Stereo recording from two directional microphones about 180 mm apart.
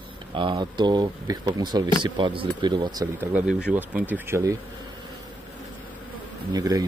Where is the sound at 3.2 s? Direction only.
5° right (ahead or behind).